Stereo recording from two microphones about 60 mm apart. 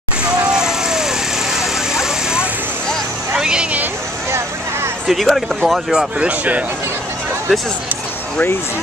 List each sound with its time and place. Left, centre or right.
0.2 s vehicle: centre
3.3 s a sound: centre
5.0 s speech: centre
5.9 s speech: centre